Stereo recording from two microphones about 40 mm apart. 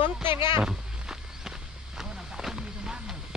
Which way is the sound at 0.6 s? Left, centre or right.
Centre.